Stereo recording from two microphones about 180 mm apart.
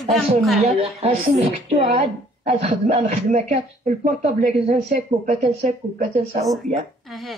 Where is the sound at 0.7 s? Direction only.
35° right (ahead or behind).